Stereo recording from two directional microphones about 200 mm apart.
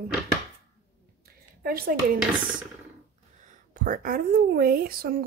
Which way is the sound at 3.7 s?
45° right (ahead or behind).